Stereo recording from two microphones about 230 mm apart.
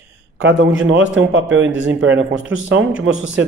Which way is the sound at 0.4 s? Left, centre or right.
Right.